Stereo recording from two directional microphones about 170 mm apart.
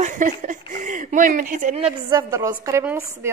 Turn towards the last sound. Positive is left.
turn(degrees=-15)  # may be behind; listen again after turning